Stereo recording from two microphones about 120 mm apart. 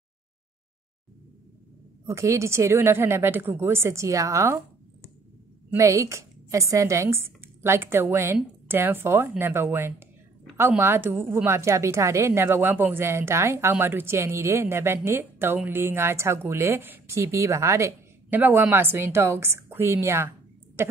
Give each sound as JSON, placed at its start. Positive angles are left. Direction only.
{"t": 2.0, "sound": "a woman's voice", "side_deg": -25}
{"t": 5.8, "sound": "a woman's voice", "side_deg": -25}